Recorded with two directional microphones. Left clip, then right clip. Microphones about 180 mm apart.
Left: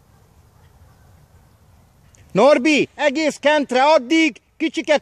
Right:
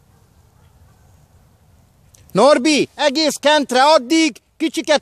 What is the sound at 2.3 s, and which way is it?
Speech, 15° right (ahead or behind).